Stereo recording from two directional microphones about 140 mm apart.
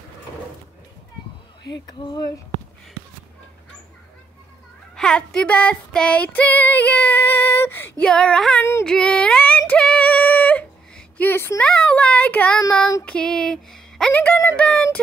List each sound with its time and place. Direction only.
1.9 s a sound: 30° left (ahead or behind)
4.9 s female singing: 5° left (ahead or behind)
8.0 s speech: 5° left (ahead or behind)
8.8 s female singing: 5° left (ahead or behind)